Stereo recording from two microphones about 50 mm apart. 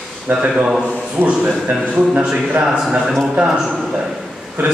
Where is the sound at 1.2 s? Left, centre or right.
Right.